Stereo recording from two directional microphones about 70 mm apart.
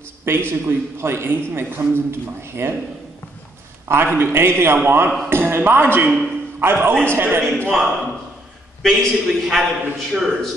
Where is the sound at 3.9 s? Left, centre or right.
Right.